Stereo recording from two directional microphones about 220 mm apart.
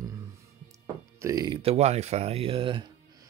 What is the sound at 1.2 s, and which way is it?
Speech, 15° right (ahead or behind).